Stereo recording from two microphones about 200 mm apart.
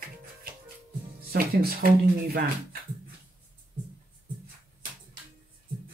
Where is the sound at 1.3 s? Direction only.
50° right (ahead or behind).